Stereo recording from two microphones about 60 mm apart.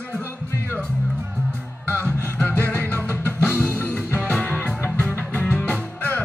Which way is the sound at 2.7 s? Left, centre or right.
Left.